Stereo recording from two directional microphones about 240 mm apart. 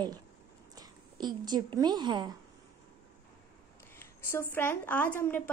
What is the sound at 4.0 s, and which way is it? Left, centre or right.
Speech, centre.